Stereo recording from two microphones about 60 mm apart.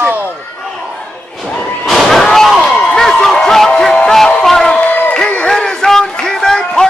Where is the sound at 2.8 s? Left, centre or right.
Centre.